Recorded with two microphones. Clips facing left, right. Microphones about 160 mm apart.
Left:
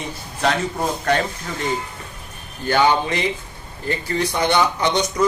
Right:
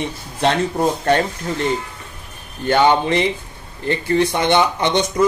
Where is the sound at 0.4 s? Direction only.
25° right (ahead or behind).